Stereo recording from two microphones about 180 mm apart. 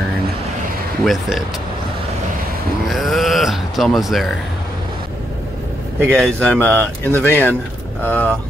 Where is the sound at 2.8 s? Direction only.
Centre (ahead or behind).